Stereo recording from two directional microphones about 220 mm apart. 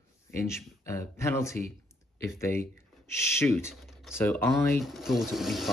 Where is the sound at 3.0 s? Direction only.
10° left (ahead or behind).